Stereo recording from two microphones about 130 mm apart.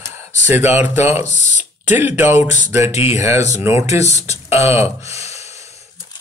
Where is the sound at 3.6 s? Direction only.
20° right (ahead or behind).